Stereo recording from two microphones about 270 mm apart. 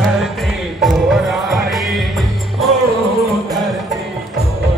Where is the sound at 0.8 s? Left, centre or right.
Centre.